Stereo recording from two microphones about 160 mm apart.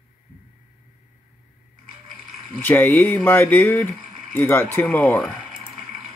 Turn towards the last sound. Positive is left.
turn(degrees=15)  # may be behind; listen again after turning